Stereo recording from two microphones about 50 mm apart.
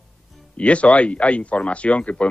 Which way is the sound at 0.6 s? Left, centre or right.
Left.